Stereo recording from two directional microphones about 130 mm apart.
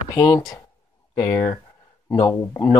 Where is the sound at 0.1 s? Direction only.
25° left (ahead or behind).